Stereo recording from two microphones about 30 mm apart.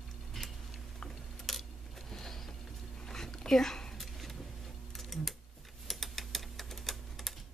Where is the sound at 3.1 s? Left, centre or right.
Centre.